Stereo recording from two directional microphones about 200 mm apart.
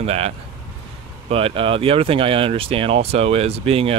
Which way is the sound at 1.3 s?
25° right (ahead or behind).